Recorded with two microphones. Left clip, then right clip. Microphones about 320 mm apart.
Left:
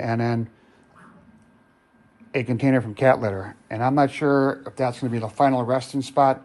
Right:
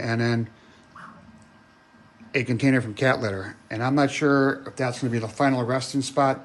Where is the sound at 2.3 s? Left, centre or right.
Centre.